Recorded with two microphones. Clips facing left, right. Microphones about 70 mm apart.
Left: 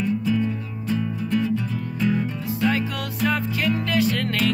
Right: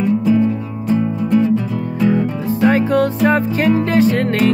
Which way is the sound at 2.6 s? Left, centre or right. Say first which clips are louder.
Right 11 dB; right.